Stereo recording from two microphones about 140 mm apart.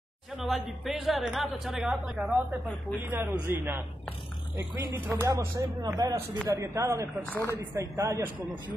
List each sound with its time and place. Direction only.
0.4 s a woman's voice: centre (ahead or behind)
4.9 s speech: 20° right (ahead or behind)
7.2 s speech: 15° left (ahead or behind)
7.7 s speech: 20° right (ahead or behind)